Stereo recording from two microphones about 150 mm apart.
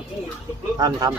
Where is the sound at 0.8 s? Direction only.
25° right (ahead or behind).